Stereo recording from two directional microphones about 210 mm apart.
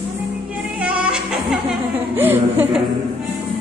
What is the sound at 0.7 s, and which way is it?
Music, 5° right (ahead or behind).